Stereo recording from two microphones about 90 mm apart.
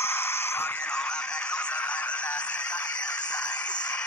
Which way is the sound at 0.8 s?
10° left (ahead or behind).